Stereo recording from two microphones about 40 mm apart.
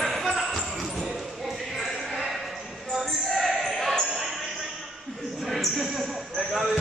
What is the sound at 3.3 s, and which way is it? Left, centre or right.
Basketball bounce, centre.